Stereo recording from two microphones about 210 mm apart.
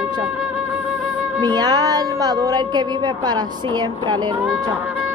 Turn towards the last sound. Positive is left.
turn(degrees=-20)  # may be behind; listen again after turning